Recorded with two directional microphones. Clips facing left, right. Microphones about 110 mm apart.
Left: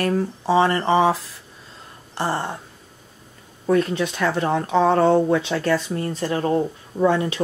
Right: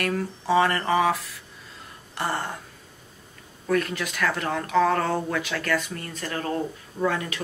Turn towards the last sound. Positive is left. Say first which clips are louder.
# left 7 dB
turn(degrees=30)  # may be behind; listen again after turning